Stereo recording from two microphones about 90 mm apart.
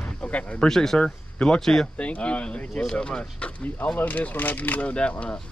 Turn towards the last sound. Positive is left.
turn(degrees=15)  # may be behind; listen again after turning